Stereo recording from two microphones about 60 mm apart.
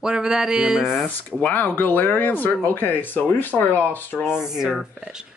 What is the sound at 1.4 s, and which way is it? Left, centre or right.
Speech, left.